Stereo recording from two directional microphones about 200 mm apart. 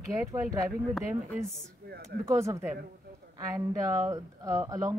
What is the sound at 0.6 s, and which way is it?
Speech, centre (ahead or behind).